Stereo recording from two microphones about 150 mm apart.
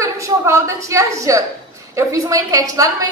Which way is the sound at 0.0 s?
20° right (ahead or behind).